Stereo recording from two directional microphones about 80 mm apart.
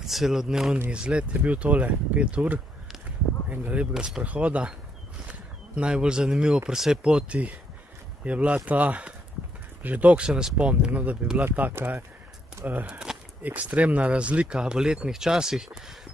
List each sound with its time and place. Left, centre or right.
0.0 s speech: centre
5.8 s speech: centre